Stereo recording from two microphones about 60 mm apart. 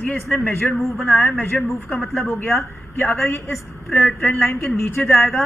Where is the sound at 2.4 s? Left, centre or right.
Left.